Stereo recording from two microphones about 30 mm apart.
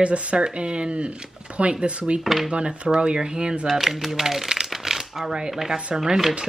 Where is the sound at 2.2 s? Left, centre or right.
Centre.